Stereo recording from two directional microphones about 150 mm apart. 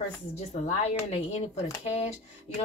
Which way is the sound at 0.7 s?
45° left (ahead or behind).